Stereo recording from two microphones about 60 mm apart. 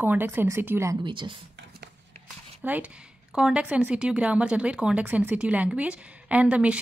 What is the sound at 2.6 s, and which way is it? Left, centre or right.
A woman's voice, right.